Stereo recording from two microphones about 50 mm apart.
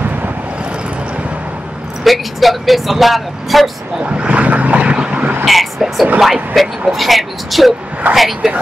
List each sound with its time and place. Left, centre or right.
2.0 s speech: centre
4.0 s vehicle: right
5.4 s speech: centre